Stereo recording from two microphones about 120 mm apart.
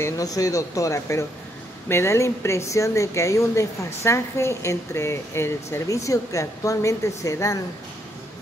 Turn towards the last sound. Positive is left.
turn(degrees=25)  # may be behind; listen again after turning